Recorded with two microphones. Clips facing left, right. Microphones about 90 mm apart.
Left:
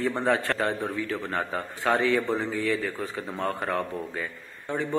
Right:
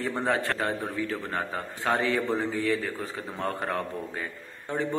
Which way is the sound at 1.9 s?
25° right (ahead or behind).